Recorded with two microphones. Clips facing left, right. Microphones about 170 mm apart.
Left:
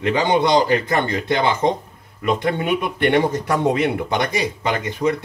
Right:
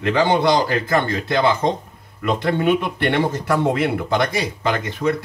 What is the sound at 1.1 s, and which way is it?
Speech, 20° left (ahead or behind).